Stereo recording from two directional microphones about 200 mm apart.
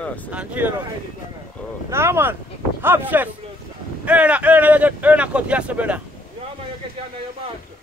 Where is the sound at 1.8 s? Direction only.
15° right (ahead or behind).